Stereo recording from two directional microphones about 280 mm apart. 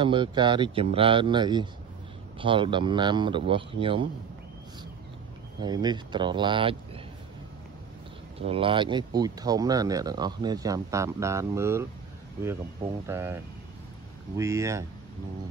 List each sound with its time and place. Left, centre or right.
0.0 s speech: centre
5.6 s speech: centre
8.4 s speech: centre